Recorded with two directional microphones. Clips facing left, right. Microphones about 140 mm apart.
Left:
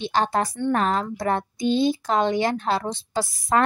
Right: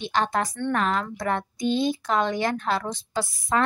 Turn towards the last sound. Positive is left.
turn(degrees=40)  # may be behind; listen again after turning